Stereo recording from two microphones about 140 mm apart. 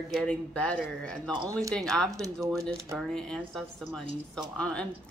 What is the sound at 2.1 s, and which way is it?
Speech, 25° right (ahead or behind).